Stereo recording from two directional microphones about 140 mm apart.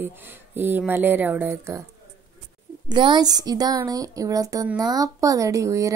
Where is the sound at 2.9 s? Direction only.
35° right (ahead or behind).